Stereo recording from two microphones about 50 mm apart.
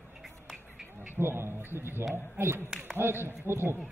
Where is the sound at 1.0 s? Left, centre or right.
Right.